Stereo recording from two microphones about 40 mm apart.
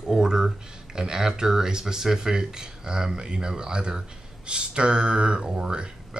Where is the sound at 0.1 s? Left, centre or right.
Centre.